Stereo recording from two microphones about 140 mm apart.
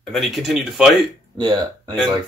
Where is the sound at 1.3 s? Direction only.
30° right (ahead or behind).